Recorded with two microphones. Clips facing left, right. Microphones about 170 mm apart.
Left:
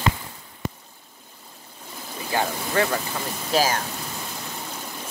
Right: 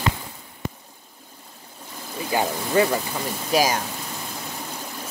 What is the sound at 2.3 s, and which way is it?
Speech, 15° right (ahead or behind).